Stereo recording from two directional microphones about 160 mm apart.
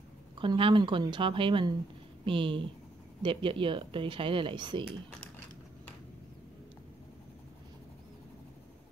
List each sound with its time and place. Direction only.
0.4 s speech: 35° right (ahead or behind)